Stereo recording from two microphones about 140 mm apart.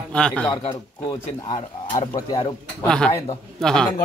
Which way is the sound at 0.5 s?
30° left (ahead or behind).